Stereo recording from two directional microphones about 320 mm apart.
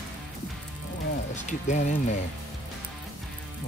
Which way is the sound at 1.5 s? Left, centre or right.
Left.